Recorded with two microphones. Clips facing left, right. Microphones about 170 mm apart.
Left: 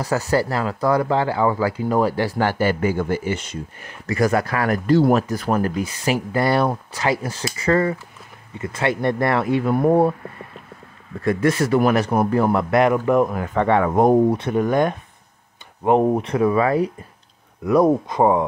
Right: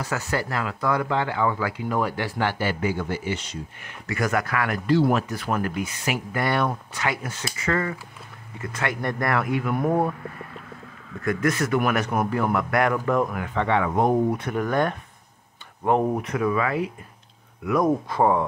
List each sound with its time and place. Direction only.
0.0 s speech: 35° left (ahead or behind)
3.8 s speech: 35° left (ahead or behind)
11.2 s speech: 30° left (ahead or behind)
13.4 s speech: 45° left (ahead or behind)
14.3 s speech: 25° left (ahead or behind)
18.0 s speech: 20° left (ahead or behind)